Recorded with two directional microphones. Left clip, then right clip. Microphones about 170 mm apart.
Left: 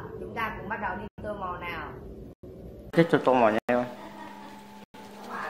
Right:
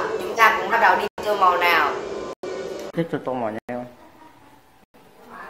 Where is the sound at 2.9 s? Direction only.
15° left (ahead or behind).